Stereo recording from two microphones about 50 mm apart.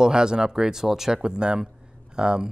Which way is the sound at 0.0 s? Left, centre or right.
Centre.